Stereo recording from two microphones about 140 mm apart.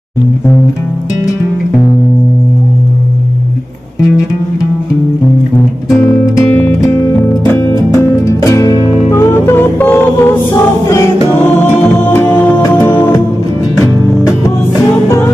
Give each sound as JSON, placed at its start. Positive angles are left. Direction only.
{"t": 6.0, "sound": "music", "side_deg": 20}
{"t": 12.1, "sound": "music", "side_deg": 15}